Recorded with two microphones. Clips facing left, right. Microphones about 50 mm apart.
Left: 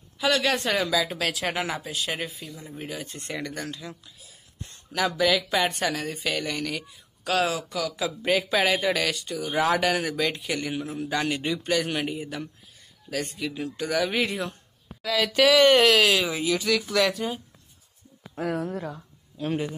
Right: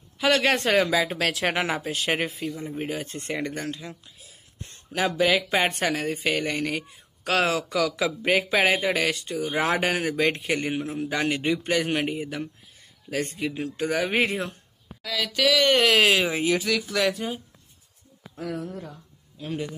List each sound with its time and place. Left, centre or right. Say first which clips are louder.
0.2 s speech: right 2 dB; right
2.5 s speech: right 5 dB; right
4.9 s speech: right 1 dB; right
7.2 s speech: right 2 dB; right
8.2 s speech: right 1 dB; right
15.0 s speech: left 4 dB; centre
15.9 s speech: right 1 dB; right
16.6 s speech: left 1 dB; centre
18.7 s a sound: left 5 dB; left